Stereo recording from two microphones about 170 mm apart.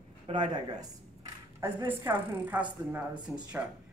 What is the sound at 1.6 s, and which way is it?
Speech, 25° right (ahead or behind).